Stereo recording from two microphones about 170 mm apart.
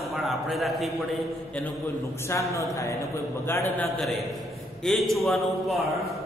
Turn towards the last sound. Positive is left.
turn(degrees=0)  # may be behind; listen again after turning